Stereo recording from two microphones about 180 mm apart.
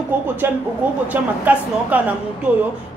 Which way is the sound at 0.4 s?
10° right (ahead or behind).